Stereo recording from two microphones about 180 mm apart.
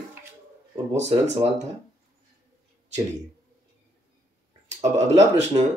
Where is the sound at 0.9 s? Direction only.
40° right (ahead or behind).